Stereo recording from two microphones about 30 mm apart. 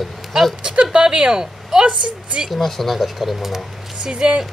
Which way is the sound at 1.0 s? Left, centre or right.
Right.